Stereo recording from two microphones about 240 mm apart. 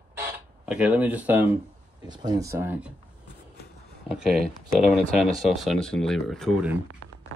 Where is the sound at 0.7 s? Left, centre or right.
Centre.